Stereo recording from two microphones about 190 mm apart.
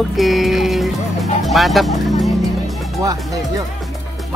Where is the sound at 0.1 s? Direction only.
Centre (ahead or behind).